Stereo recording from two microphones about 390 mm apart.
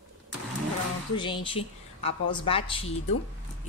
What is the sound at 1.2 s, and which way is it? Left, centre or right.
A woman's voice, centre.